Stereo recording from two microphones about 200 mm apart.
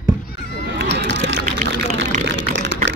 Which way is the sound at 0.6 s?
55° right (ahead or behind).